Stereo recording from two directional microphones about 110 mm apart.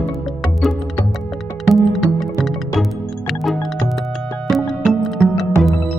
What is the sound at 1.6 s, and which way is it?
Music, centre (ahead or behind).